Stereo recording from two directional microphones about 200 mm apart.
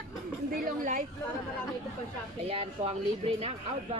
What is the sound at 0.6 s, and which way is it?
Speech, 40° right (ahead or behind).